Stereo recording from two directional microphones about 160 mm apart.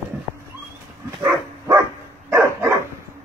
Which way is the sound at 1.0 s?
20° right (ahead or behind).